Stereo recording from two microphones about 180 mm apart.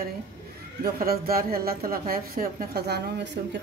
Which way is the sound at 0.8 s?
55° right (ahead or behind).